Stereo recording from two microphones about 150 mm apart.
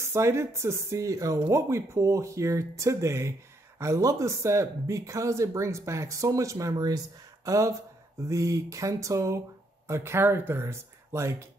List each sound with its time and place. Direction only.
0.0 s speech: 20° right (ahead or behind)